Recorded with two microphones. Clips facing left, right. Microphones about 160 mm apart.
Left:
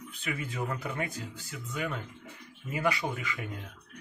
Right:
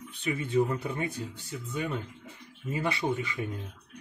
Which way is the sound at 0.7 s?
25° right (ahead or behind).